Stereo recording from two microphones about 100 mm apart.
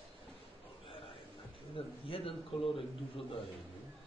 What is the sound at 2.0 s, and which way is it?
Speech, 70° left (ahead or behind).